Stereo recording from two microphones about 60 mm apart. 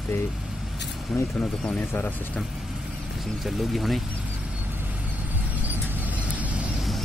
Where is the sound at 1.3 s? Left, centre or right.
Centre.